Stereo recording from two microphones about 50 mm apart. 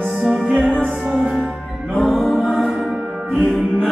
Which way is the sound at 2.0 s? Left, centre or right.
Centre.